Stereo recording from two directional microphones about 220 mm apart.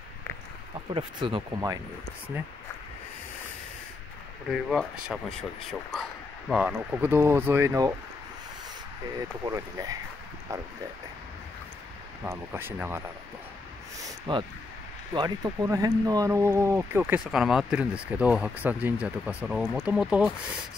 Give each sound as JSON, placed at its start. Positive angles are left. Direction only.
{"t": 0.9, "sound": "speech", "side_deg": -25}
{"t": 4.5, "sound": "speech", "side_deg": 0}
{"t": 6.5, "sound": "speech", "side_deg": -10}
{"t": 9.5, "sound": "speech", "side_deg": -15}
{"t": 12.3, "sound": "speech", "side_deg": -10}
{"t": 14.0, "sound": "a sound", "side_deg": -20}
{"t": 15.1, "sound": "speech", "side_deg": -15}